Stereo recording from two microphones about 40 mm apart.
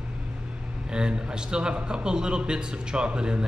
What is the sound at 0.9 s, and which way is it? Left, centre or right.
A man's voice, right.